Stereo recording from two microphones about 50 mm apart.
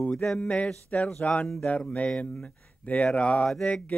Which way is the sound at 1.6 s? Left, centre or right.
Left.